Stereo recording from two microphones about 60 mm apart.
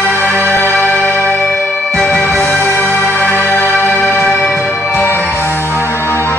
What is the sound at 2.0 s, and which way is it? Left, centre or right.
Music, centre.